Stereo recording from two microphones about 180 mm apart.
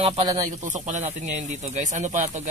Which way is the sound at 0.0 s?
30° right (ahead or behind).